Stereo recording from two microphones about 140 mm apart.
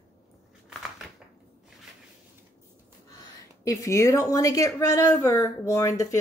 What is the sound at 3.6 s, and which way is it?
Speech, 20° left (ahead or behind).